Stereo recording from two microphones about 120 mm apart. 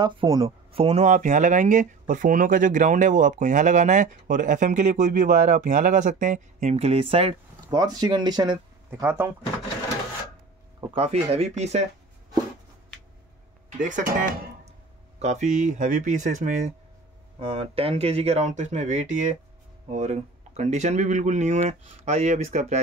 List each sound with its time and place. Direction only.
0.0 s speech: 40° right (ahead or behind)
0.8 s speech: 80° right; by 7.3 s 50° right (ahead or behind)
7.7 s speech: 35° right (ahead or behind)
11.0 s speech: 60° right (ahead or behind)
13.7 s speech: 90° right
15.1 s speech: 80° right
17.4 s speech: 50° right (ahead or behind); by 19.3 s 90° right
19.9 s speech: 80° right